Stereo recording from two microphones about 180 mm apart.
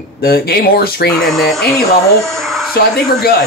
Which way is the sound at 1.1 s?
Centre (ahead or behind).